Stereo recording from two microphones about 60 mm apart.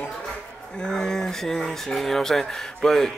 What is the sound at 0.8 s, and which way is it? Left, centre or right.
Speech, centre.